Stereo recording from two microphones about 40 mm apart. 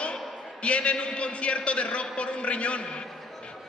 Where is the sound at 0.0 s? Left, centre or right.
Left.